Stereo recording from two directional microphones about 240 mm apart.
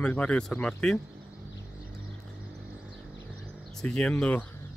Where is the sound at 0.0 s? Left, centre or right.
Centre.